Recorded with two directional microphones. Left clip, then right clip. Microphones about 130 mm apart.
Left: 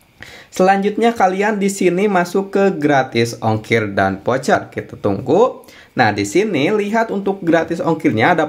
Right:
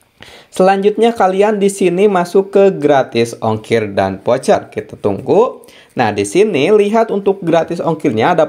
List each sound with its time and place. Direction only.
0.6 s speech: 15° right (ahead or behind)